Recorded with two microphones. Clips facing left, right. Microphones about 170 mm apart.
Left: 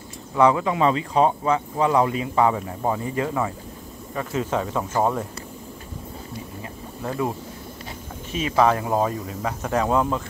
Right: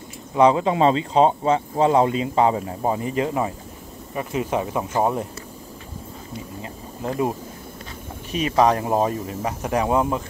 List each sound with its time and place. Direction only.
0.4 s speech: 25° right (ahead or behind)
7.0 s speech: 20° right (ahead or behind)
8.6 s speech: 35° right (ahead or behind)
8.9 s speech: 20° right (ahead or behind)